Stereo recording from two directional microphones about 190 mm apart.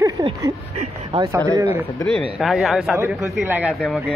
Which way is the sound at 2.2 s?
Centre (ahead or behind).